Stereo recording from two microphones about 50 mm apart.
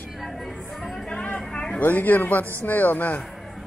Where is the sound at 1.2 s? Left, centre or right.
Left.